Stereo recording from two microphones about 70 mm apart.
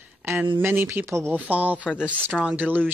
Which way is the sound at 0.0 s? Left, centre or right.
Right.